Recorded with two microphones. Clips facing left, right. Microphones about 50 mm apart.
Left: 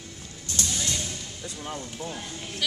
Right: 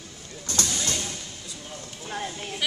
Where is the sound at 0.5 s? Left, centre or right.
Right.